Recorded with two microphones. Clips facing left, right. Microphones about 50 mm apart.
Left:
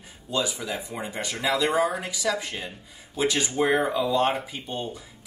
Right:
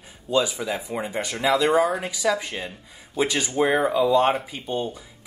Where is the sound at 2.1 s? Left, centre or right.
Right.